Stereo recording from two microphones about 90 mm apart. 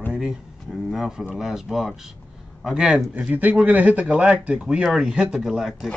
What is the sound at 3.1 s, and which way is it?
Speech, 15° right (ahead or behind).